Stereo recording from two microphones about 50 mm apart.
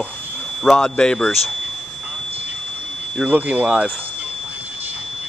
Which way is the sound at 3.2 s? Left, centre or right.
Right.